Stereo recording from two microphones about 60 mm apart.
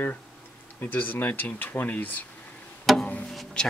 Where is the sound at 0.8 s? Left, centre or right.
Left.